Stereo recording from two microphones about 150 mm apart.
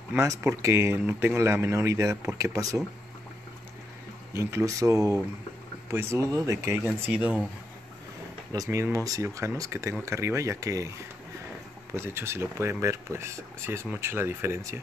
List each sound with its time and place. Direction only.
0.1 s speech: 15° right (ahead or behind)
4.3 s speech: 20° right (ahead or behind)
6.9 s speech: 5° right (ahead or behind)
8.5 s speech: 20° right (ahead or behind)
11.9 s speech: 15° right (ahead or behind)